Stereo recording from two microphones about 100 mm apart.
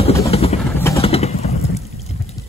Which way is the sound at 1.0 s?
90° left.